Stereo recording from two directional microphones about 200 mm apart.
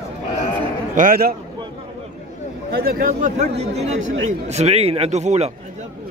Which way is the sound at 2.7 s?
50° right (ahead or behind).